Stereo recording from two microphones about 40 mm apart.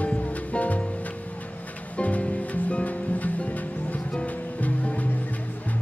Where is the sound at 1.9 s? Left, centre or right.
Left.